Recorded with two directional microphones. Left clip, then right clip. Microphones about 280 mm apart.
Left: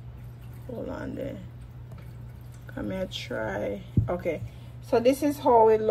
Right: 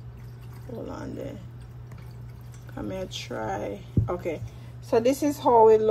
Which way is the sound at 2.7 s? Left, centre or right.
Right.